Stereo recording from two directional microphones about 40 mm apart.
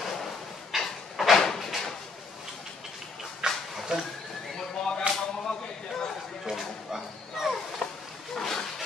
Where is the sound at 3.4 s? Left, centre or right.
Centre.